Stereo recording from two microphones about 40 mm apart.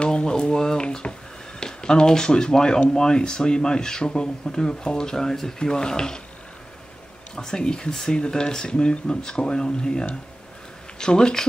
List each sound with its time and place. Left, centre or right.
0.0 s a sound: left
1.6 s speech: centre
7.3 s speech: centre